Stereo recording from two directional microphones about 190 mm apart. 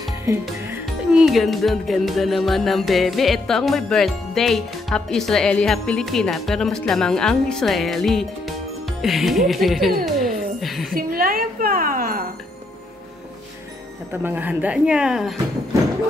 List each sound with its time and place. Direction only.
0.8 s music: centre (ahead or behind)
9.0 s speech: centre (ahead or behind)
11.0 s a sound: 50° right (ahead or behind)
14.1 s speech: 10° right (ahead or behind)